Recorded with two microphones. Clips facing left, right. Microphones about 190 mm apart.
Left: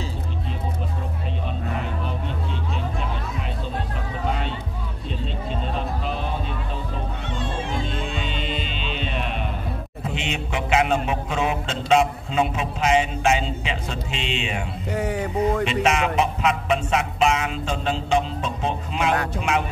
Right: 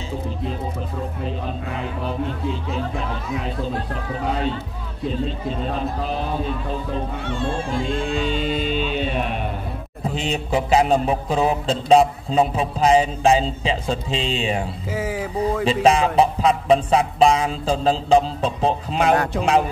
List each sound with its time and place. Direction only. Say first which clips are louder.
8.3 s music: right 7 dB; 40° right (ahead or behind)
10.0 s a man's voice: right 5 dB; 35° right (ahead or behind)
14.9 s speech: left 2 dB; centre (ahead or behind)
15.6 s a man's voice: right 4 dB; 35° right (ahead or behind)